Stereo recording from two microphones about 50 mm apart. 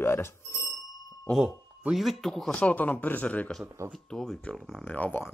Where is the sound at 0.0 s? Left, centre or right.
Left.